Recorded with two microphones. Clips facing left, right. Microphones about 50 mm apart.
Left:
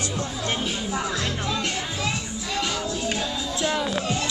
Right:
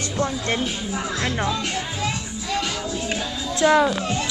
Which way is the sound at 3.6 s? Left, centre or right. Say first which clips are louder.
Right 10 dB; right.